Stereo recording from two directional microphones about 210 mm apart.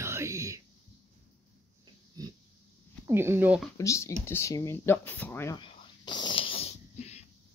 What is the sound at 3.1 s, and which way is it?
Speech, 10° right (ahead or behind).